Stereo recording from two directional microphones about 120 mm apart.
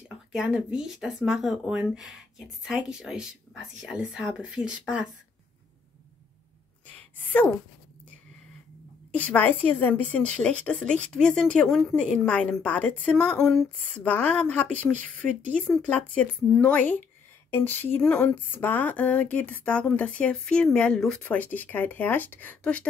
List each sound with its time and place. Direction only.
0.3 s speech: 10° right (ahead or behind)
9.1 s a woman's voice: 15° left (ahead or behind)
16.4 s speech: centre (ahead or behind)
16.7 s a woman's voice: 15° left (ahead or behind)